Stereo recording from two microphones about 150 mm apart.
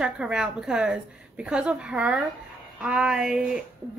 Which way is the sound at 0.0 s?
5° right (ahead or behind).